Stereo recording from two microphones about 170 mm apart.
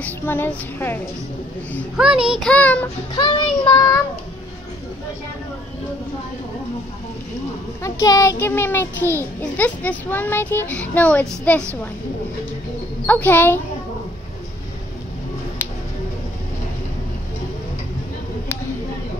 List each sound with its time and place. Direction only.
0.0 s a child's voice: 10° left (ahead or behind)
2.3 s a child's voice: 5° left (ahead or behind)
3.2 s child singing: 25° left (ahead or behind)
7.8 s a child's voice: 20° left (ahead or behind)
13.0 s a child's voice: 10° left (ahead or behind)